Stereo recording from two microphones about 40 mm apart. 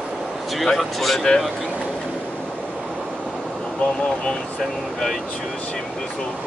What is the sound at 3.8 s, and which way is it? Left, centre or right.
Speech, left.